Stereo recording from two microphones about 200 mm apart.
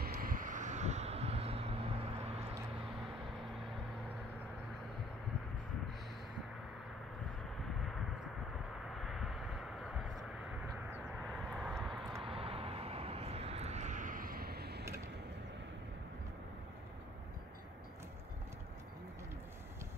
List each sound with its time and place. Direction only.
0.0 s vehicle: 45° right (ahead or behind); by 1.8 s 30° right (ahead or behind)
8.9 s vehicle: centre (ahead or behind)
12.3 s vehicle: 30° right (ahead or behind); by 14.9 s 55° right (ahead or behind)